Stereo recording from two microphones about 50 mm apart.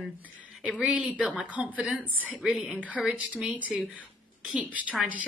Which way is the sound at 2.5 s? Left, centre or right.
Centre.